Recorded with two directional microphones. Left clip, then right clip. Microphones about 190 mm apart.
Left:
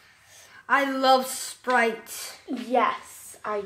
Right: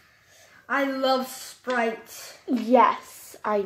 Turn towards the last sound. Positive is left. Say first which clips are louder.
# right 4 dB
turn(degrees=-45)  # may be behind; listen again after turning